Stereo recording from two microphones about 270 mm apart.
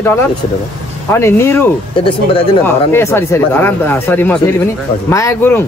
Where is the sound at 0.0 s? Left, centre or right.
Centre.